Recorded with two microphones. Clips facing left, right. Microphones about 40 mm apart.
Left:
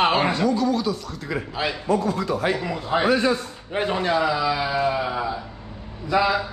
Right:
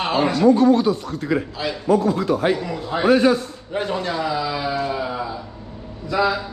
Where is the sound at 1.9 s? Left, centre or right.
Right.